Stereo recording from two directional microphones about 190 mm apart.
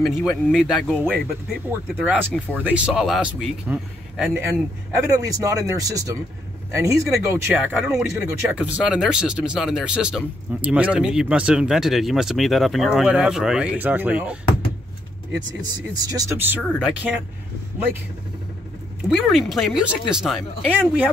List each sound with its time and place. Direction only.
0.0 s speech: centre (ahead or behind)
16.0 s speech: 20° right (ahead or behind)
19.0 s speech: centre (ahead or behind)